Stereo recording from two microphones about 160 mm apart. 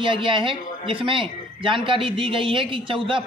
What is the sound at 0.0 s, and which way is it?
Speech, 30° right (ahead or behind).